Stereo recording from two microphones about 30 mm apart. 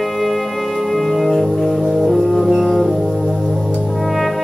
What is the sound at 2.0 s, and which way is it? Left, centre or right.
Music, centre.